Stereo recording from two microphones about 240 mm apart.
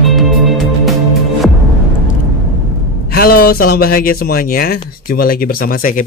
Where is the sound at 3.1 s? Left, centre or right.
Left.